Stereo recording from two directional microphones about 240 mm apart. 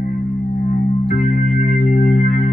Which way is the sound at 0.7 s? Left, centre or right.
Left.